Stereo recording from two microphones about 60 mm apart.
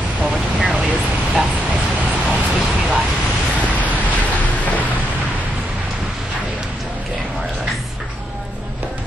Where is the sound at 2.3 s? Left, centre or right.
Centre.